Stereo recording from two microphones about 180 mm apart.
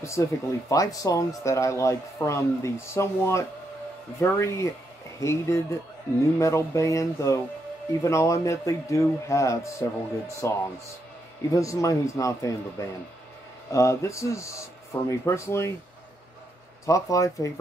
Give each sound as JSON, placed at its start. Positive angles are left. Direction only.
{"t": 0.0, "sound": "speech", "side_deg": 15}
{"t": 16.8, "sound": "speech", "side_deg": 20}